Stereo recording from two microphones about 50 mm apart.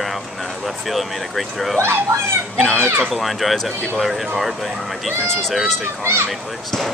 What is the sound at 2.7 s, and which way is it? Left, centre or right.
Speech, right.